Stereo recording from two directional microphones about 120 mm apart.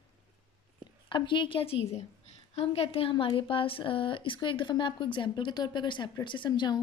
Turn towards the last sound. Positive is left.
turn(degrees=40)  # may be behind; listen again after turning